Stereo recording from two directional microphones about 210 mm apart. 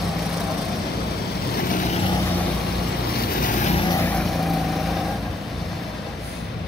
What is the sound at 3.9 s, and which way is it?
Vehicle, 10° left (ahead or behind).